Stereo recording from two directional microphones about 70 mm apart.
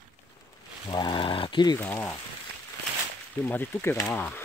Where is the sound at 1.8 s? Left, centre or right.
Left.